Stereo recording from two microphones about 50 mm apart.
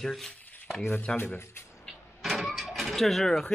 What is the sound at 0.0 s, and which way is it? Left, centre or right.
Speech, centre.